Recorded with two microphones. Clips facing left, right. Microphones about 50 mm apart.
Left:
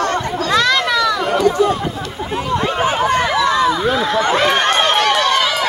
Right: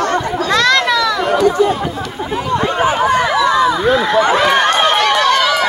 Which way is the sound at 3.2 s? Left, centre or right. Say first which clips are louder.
Right 2 dB; right.